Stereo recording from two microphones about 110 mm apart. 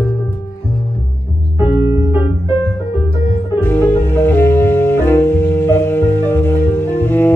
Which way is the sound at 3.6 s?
20° left (ahead or behind).